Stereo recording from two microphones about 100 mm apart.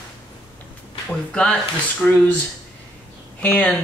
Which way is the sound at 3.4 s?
15° left (ahead or behind).